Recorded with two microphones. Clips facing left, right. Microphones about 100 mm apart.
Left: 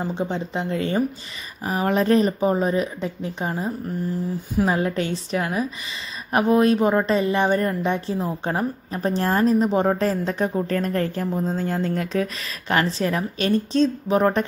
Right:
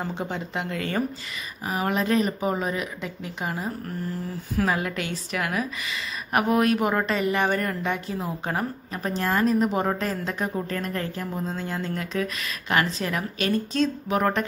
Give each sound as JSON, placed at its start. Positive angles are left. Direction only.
{"t": 0.2, "sound": "speech", "side_deg": 25}
{"t": 1.6, "sound": "speech", "side_deg": 35}